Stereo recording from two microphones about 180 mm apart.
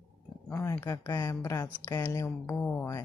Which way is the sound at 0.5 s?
15° left (ahead or behind).